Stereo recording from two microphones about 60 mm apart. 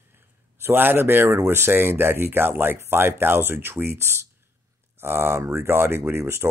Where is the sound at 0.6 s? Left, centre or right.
Right.